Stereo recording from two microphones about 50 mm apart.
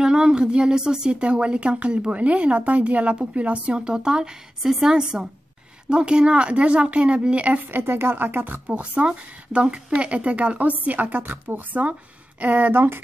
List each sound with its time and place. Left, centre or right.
0.0 s speech: centre
7.7 s speech: right
8.6 s speech: right
12.4 s speech: right